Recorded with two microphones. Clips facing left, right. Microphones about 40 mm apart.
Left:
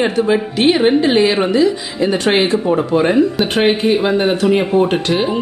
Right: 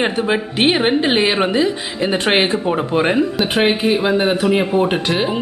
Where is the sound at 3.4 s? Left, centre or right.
Centre.